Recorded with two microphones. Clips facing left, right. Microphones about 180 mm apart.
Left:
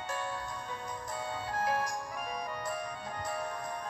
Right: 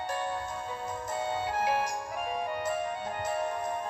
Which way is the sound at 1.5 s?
25° right (ahead or behind).